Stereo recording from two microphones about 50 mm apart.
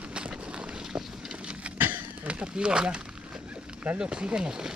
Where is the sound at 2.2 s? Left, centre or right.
Centre.